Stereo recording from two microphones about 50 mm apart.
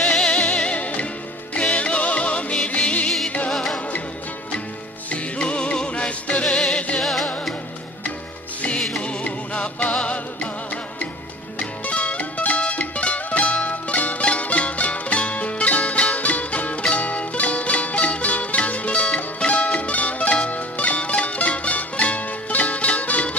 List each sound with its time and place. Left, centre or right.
0.0 s music: left
3.5 s music: centre
5.1 s music: left
7.0 s music: centre
9.0 s music: left